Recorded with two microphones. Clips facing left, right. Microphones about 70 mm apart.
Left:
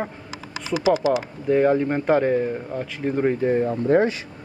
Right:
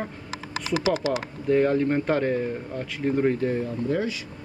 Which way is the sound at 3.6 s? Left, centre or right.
Left.